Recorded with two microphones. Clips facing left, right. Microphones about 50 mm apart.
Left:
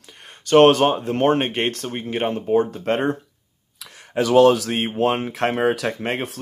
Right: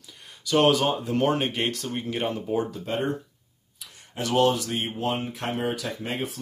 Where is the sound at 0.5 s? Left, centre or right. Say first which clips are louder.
Left 8 dB; left.